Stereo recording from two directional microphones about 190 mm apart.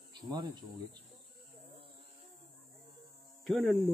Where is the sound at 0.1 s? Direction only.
20° right (ahead or behind).